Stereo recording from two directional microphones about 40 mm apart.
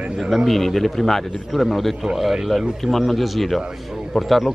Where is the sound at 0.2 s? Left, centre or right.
Centre.